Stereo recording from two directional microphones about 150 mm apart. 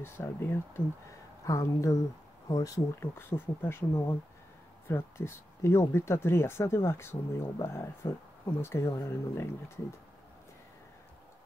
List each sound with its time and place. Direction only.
0.0 s speech: 15° left (ahead or behind)